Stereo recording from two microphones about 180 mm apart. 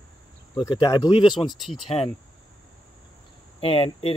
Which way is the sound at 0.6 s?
20° left (ahead or behind).